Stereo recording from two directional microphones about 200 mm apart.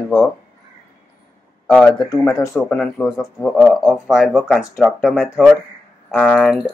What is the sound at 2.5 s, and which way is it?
Speech, 5° left (ahead or behind).